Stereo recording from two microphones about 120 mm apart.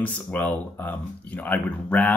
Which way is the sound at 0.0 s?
15° left (ahead or behind).